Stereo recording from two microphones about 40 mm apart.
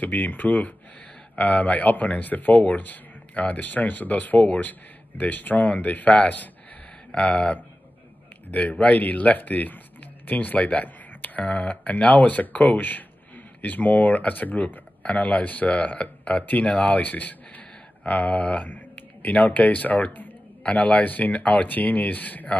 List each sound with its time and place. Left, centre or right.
0.0 s speech: left
7.1 s speech: left